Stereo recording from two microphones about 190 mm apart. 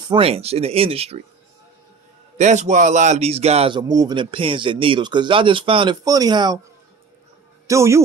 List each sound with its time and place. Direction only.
0.1 s speech: 30° right (ahead or behind)
2.3 s speech: 40° right (ahead or behind); by 6.6 s 20° right (ahead or behind)
7.6 s a man's voice: 15° right (ahead or behind)